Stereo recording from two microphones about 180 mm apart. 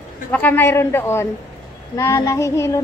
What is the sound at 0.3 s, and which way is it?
A woman's voice, 10° left (ahead or behind).